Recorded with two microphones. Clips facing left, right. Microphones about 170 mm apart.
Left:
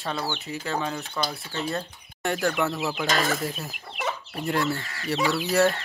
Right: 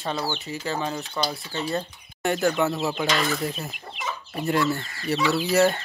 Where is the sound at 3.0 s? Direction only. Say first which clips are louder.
Left 1 dB; 40° left (ahead or behind).